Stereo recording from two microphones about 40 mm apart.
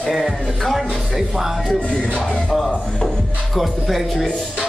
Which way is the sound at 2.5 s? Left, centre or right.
Centre.